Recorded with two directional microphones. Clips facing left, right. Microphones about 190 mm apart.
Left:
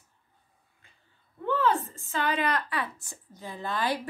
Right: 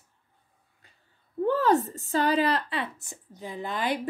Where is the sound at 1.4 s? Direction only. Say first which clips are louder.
Right 4 dB; 40° right (ahead or behind).